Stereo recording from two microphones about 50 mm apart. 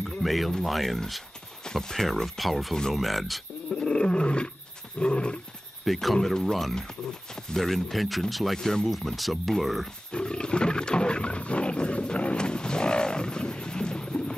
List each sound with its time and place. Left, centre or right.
0.2 s speech: centre
3.7 s roar: centre
4.9 s roaring cats: left
5.9 s speech: centre
8.5 s speech: centre
8.8 s speech: centre
10.1 s wild animals: centre